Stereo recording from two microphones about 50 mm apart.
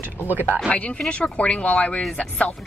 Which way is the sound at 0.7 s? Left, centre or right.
Left.